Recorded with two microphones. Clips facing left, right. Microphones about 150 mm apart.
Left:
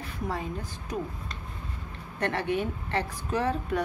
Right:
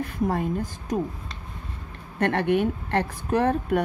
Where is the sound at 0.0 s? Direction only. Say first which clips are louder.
Right 8 dB; 50° right (ahead or behind).